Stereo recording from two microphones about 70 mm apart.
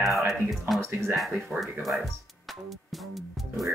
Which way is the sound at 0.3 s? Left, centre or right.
Centre.